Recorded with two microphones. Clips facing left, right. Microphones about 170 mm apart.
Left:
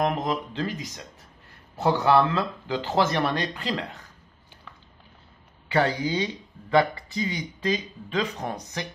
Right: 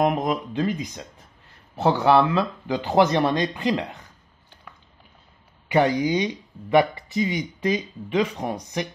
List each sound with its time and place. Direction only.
0.0 s speech: 20° right (ahead or behind)
5.7 s speech: 15° right (ahead or behind)